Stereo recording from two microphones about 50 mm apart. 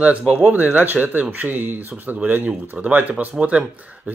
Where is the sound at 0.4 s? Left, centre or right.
Right.